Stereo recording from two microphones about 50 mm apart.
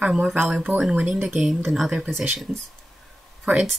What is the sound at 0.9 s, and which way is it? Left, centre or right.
Speech, centre.